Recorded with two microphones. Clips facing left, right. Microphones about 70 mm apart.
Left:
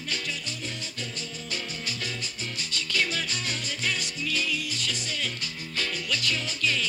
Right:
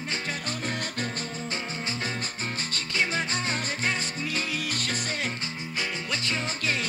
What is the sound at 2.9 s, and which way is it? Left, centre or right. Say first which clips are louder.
Music: right 2 dB; right.